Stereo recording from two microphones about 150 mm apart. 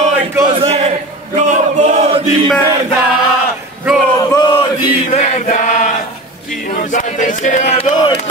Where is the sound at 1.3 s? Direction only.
55° right (ahead or behind).